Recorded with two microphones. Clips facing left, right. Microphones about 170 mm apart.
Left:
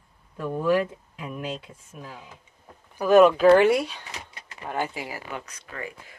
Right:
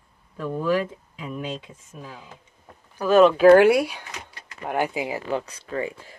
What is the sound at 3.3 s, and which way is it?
Speech, 5° right (ahead or behind).